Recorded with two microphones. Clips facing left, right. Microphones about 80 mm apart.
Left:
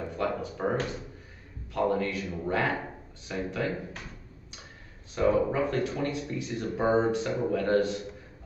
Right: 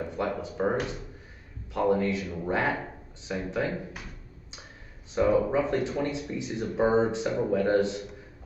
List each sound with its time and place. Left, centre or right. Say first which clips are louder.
0.2 s a sound: right 1 dB; right
1.7 s speech: right 2 dB; centre
5.1 s speech: right 2 dB; right